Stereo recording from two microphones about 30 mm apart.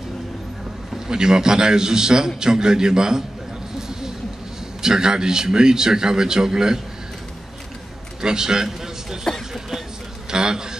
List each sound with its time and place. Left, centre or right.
0.9 s a man's voice: right
4.8 s a man's voice: right
8.2 s a man's voice: right
10.3 s a sound: right